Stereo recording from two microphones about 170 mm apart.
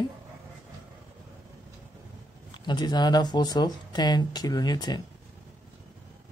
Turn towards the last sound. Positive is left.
turn(degrees=25)  # may be behind; listen again after turning